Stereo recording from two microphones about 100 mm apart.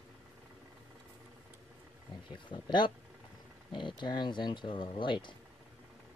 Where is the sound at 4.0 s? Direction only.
50° left (ahead or behind).